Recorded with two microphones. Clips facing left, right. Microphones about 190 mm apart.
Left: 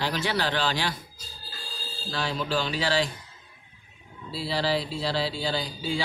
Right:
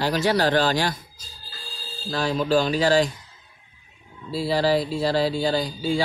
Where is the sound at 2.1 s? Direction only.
45° right (ahead or behind).